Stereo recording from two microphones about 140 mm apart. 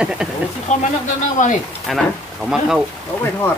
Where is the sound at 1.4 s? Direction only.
65° left (ahead or behind).